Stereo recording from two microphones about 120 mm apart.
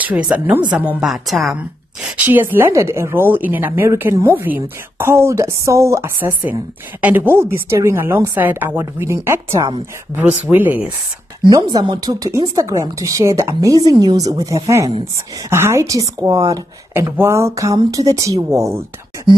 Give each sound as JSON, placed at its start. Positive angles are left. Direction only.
{"t": 0.0, "sound": "a woman's voice", "side_deg": -10}
{"t": 2.1, "sound": "a woman's voice", "side_deg": -15}
{"t": 11.4, "sound": "a woman's voice", "side_deg": -35}